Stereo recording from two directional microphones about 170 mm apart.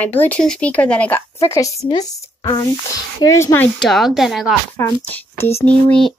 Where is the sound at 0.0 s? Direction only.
10° left (ahead or behind).